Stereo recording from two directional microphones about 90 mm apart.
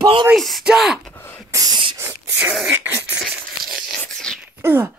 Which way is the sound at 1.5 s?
40° right (ahead or behind).